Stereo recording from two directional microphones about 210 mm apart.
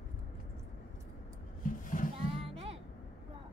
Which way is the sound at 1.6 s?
40° left (ahead or behind).